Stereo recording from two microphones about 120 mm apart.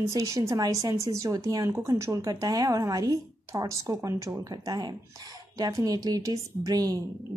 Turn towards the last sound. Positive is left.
turn(degrees=-30)  # may be behind; listen again after turning